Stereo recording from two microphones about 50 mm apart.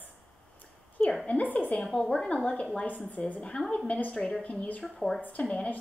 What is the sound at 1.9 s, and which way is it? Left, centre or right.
A woman's voice, centre.